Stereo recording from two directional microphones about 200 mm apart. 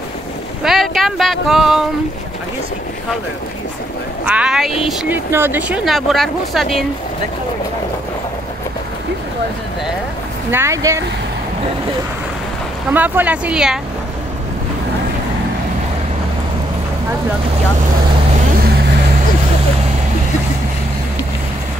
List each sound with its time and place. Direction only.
0.7 s speech: centre (ahead or behind)
4.3 s speech: 5° right (ahead or behind)
10.5 s speech: 15° right (ahead or behind)
12.9 s speech: 10° right (ahead or behind)